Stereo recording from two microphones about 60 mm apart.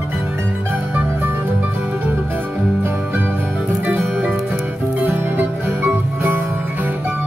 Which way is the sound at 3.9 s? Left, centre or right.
Right.